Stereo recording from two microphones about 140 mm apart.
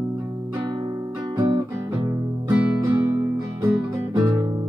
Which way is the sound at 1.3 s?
30° right (ahead or behind).